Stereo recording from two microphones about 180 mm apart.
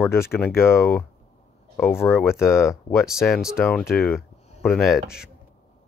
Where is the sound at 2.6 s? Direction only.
5° right (ahead or behind).